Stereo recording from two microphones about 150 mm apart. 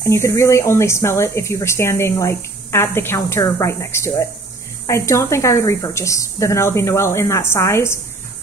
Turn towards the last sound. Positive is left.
turn(degrees=20)  # may be behind; listen again after turning